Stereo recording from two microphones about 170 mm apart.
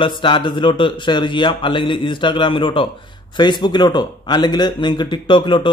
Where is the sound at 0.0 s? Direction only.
30° left (ahead or behind).